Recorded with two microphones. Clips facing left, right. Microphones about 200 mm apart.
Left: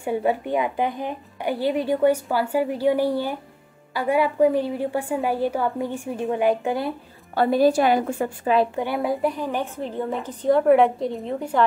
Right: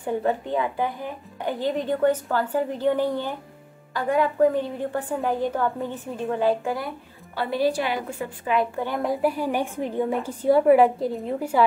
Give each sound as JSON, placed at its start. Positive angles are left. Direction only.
{"t": 0.0, "sound": "speech", "side_deg": 10}
{"t": 7.3, "sound": "a woman's voice", "side_deg": 45}
{"t": 8.7, "sound": "speech", "side_deg": 10}
{"t": 9.1, "sound": "a woman's voice", "side_deg": -5}